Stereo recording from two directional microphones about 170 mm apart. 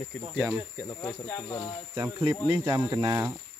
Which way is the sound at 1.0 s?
20° left (ahead or behind).